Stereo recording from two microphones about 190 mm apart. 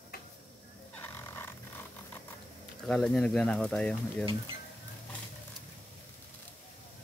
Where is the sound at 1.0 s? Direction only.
10° left (ahead or behind).